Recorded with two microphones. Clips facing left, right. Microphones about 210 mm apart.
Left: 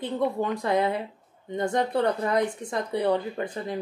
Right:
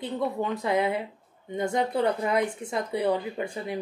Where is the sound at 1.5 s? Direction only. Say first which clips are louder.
Left 1 dB; 10° right (ahead or behind).